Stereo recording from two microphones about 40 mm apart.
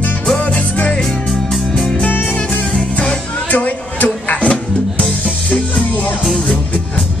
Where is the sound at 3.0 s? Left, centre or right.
Left.